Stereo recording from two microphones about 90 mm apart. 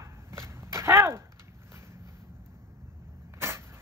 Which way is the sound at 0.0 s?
30° right (ahead or behind).